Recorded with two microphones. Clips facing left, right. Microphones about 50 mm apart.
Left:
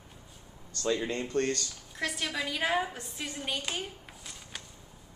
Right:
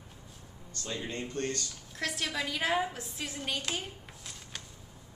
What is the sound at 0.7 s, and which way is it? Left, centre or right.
Speech, left.